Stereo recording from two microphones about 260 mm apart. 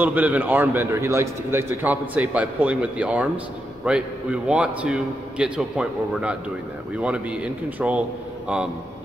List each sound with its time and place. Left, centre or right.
0.0 s a man's voice: centre